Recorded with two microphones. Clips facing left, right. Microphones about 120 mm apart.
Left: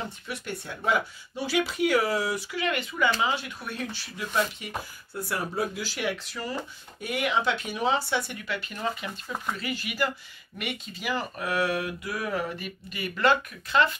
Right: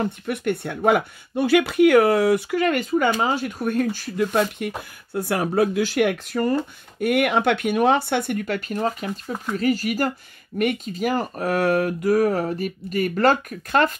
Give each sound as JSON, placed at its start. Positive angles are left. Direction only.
{"t": 0.0, "sound": "speech", "side_deg": -60}
{"t": 5.1, "sound": "speech", "side_deg": -70}